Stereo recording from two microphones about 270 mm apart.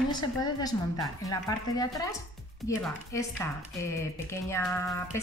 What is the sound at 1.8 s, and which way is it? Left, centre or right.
Speech, centre.